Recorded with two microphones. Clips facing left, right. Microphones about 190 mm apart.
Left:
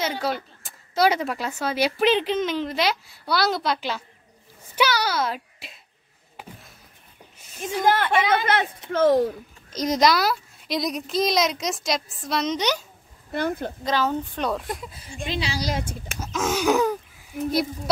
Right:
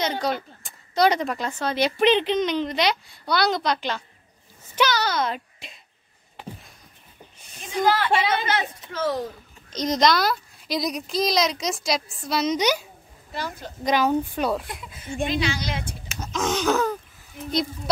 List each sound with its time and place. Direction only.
0.0 s speech: 5° left (ahead or behind)
7.6 s a woman's voice: 50° left (ahead or behind)
9.7 s speech: 5° left (ahead or behind); by 12.8 s 10° right (ahead or behind)
13.3 s a woman's voice: 55° left (ahead or behind)
13.8 s speech: 15° right (ahead or behind)
14.7 s a woman's voice: 35° left (ahead or behind)
16.2 s wheeze: 5° left (ahead or behind)